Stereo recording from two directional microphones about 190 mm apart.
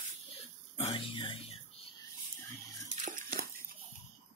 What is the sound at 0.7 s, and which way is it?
Music, 30° left (ahead or behind).